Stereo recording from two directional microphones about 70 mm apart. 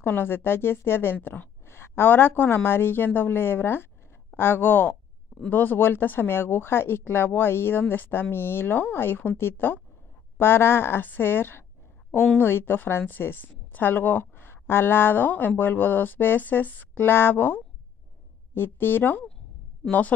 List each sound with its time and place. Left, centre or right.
0.0 s a woman's voice: left